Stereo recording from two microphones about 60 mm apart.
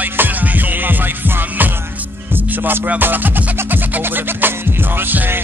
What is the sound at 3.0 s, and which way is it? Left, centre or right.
Music, right.